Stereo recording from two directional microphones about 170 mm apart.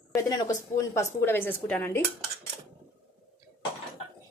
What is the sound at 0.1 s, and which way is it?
A woman's voice, 20° left (ahead or behind).